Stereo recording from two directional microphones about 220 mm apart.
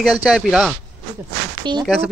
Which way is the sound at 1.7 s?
20° right (ahead or behind).